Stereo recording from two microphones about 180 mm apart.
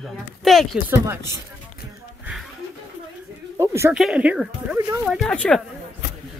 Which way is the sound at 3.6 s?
15° right (ahead or behind).